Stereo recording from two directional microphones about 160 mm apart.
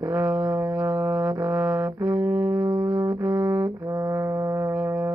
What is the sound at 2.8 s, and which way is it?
Brass instrument, 15° right (ahead or behind).